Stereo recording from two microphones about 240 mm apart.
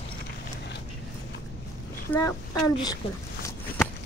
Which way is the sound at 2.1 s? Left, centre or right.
Centre.